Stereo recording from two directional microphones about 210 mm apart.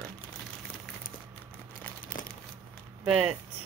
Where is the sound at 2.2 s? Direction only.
40° left (ahead or behind).